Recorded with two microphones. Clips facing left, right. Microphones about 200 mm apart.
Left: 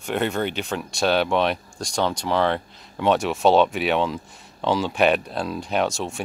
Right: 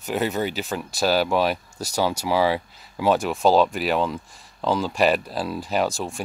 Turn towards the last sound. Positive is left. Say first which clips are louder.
# even
turn(degrees=0)  # may be behind; listen again after turning